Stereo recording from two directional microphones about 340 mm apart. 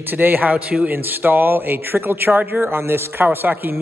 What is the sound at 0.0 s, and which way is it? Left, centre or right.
Speech, centre.